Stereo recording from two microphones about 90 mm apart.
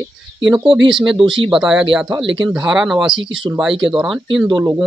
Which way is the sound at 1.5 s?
5° right (ahead or behind).